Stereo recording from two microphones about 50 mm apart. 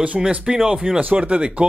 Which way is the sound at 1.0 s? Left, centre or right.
Right.